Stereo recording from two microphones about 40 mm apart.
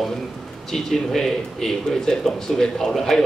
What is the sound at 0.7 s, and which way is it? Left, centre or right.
A man's voice, centre.